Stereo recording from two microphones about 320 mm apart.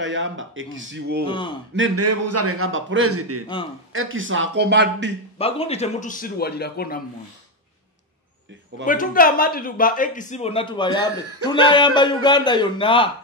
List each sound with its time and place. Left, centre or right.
0.0 s speech: right
1.2 s a man's voice: centre
1.8 s a man's voice: right
5.4 s speech: centre
8.8 s a man's voice: left